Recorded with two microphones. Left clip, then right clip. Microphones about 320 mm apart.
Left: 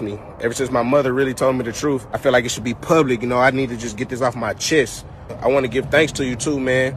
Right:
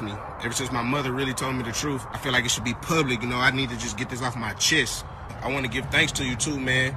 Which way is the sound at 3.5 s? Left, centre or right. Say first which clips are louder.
Left 5 dB; centre.